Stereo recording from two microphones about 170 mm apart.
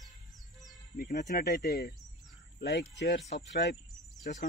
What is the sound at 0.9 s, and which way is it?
Speech, 50° left (ahead or behind).